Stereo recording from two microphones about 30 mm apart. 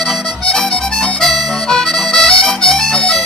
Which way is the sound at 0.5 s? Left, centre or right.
Centre.